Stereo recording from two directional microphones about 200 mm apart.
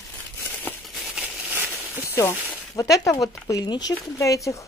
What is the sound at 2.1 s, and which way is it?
Speech, 10° left (ahead or behind).